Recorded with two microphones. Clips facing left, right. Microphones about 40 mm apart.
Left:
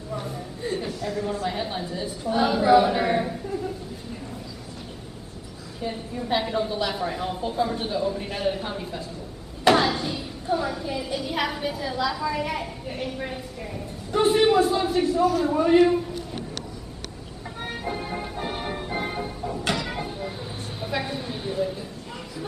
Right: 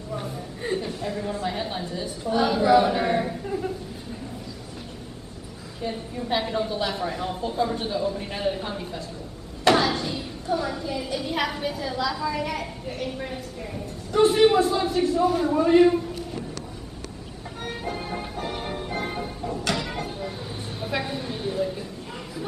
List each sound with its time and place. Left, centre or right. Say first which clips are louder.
0.9 s speech: left 1 dB; right
1.5 s a woman's voice: even; centre
5.8 s a woman's voice: even; centre
9.7 s a sound: left 1 dB; centre
11.1 s a woman's voice: even; centre
17.9 s music: left 1 dB; centre
18.3 s music: left 1 dB; centre
19.7 s a sound: left 1 dB; centre